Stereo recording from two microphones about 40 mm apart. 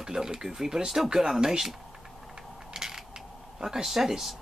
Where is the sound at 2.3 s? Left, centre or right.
Centre.